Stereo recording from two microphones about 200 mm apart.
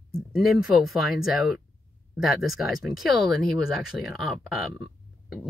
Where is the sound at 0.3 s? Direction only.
Centre (ahead or behind).